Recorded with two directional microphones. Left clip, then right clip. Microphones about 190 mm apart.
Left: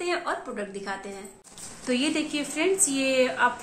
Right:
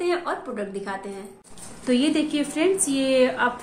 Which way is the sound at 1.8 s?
25° right (ahead or behind).